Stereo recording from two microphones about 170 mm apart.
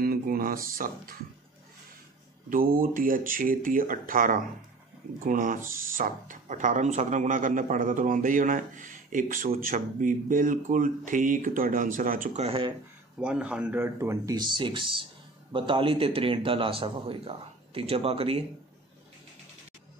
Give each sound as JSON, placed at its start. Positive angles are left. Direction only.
{"t": 0.0, "sound": "speech", "side_deg": -60}
{"t": 2.5, "sound": "a man's voice", "side_deg": -55}
{"t": 12.4, "sound": "a man's voice", "side_deg": -30}
{"t": 13.2, "sound": "a man's voice", "side_deg": -5}